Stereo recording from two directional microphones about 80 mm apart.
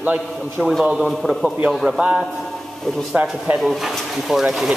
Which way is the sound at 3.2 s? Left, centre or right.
Centre.